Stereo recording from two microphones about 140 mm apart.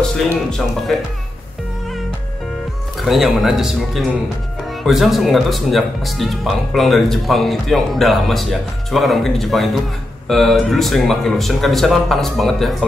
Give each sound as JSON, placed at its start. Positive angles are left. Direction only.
{"t": 0.0, "sound": "speech", "side_deg": 5}
{"t": 3.0, "sound": "speech", "side_deg": 0}